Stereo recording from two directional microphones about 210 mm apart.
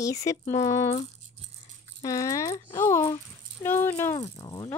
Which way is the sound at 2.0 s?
15° left (ahead or behind).